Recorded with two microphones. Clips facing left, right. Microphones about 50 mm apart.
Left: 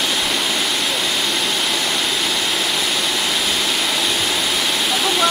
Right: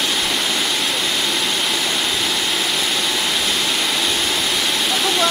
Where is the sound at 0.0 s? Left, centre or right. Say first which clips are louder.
Even; centre.